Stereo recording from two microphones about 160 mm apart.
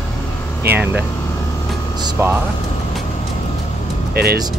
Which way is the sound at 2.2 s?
15° right (ahead or behind).